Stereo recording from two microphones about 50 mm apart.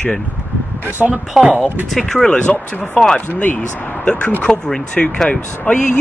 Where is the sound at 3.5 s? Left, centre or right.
Left.